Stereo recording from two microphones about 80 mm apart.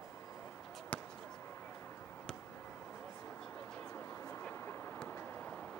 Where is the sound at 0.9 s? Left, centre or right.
Centre.